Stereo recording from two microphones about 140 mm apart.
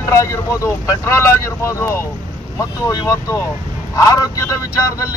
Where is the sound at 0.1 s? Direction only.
20° left (ahead or behind).